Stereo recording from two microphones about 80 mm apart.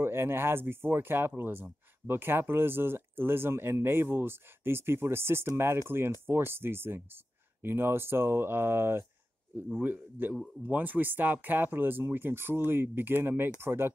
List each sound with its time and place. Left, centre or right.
0.0 s speech: right
9.7 s speech: centre